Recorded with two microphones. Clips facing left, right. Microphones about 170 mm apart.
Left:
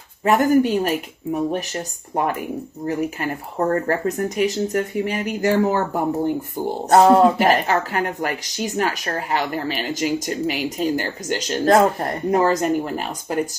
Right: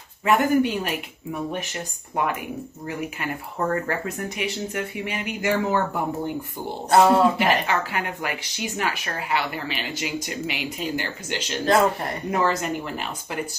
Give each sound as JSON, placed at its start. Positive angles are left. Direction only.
{"t": 0.2, "sound": "speech", "side_deg": 40}